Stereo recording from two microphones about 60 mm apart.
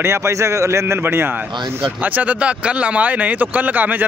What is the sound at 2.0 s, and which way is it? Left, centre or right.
Speech, right.